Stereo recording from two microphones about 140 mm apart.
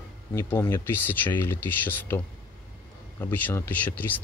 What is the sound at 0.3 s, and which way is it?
Speech, 20° left (ahead or behind).